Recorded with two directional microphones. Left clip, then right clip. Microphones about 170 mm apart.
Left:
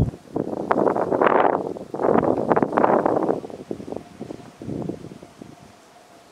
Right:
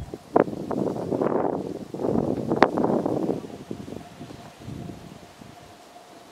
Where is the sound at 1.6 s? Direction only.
30° left (ahead or behind).